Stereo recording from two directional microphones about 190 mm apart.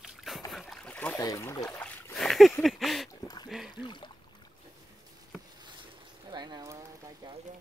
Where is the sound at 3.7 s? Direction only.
25° left (ahead or behind).